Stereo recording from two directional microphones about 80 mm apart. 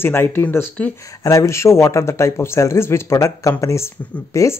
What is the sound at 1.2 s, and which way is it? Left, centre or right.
Speech, left.